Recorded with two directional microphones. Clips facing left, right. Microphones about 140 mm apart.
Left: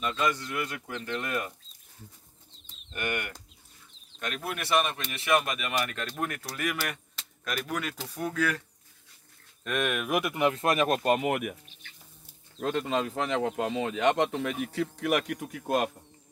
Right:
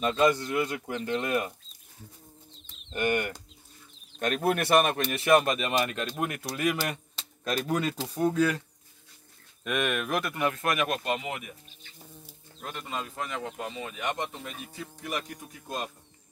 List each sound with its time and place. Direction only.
0.0 s speech: 30° right (ahead or behind)
2.9 s speech: 30° right (ahead or behind)
4.2 s speech: 45° right (ahead or behind); by 8.6 s 25° right (ahead or behind)
9.7 s speech: centre (ahead or behind); by 11.9 s 65° left (ahead or behind)
12.5 s speech: 90° left; by 15.9 s 70° left (ahead or behind)